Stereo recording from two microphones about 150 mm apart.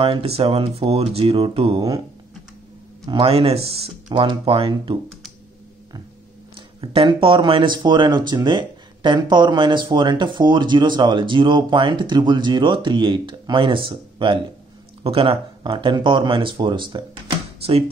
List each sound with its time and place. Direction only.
0.0 s speech: 40° right (ahead or behind)
3.1 s speech: 40° right (ahead or behind)
6.8 s speech: 35° right (ahead or behind)